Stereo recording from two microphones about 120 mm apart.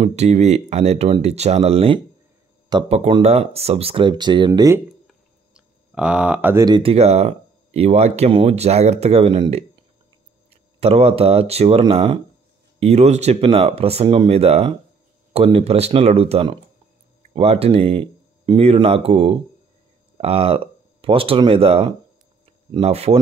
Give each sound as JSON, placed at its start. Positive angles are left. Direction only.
{"t": 0.0, "sound": "speech", "side_deg": -65}
{"t": 2.7, "sound": "speech", "side_deg": -35}
{"t": 3.1, "sound": "speech", "side_deg": -55}
{"t": 4.5, "sound": "speech", "side_deg": -25}
{"t": 5.0, "sound": "a sound", "side_deg": -10}
{"t": 6.8, "sound": "speech", "side_deg": -55}
{"t": 8.3, "sound": "speech", "side_deg": -50}
{"t": 12.8, "sound": "speech", "side_deg": -65}